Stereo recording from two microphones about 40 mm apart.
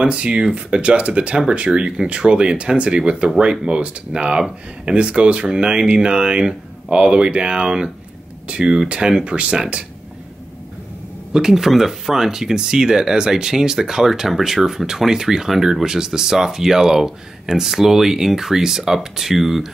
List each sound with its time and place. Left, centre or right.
0.0 s speech: right
11.3 s speech: centre